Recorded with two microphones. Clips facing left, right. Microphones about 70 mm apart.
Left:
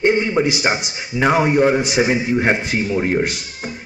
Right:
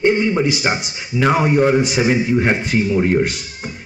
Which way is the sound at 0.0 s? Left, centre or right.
Centre.